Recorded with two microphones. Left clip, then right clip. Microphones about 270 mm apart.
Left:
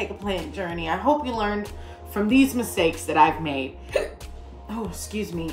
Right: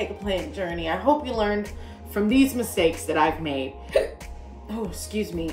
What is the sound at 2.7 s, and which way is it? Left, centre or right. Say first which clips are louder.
Speech: left 3 dB; centre.